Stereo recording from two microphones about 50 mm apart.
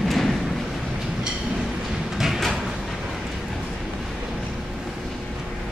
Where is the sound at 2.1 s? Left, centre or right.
Centre.